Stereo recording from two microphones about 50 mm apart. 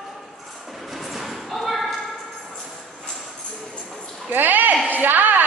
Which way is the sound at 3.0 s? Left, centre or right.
Centre.